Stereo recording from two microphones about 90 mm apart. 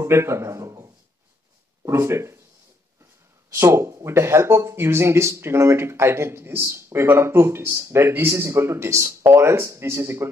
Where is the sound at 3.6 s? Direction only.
30° right (ahead or behind).